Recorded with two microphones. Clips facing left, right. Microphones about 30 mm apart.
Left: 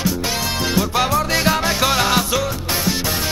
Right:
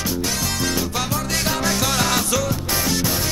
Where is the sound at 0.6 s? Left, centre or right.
Left.